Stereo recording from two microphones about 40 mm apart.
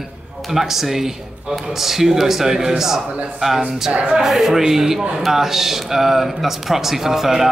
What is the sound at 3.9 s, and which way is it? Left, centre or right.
Speech, right.